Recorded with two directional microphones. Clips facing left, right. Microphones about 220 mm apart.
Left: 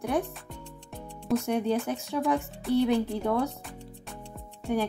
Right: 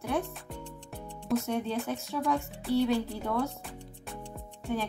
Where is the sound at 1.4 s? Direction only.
15° left (ahead or behind).